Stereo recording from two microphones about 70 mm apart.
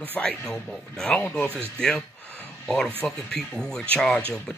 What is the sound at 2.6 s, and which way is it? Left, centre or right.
Speech, centre.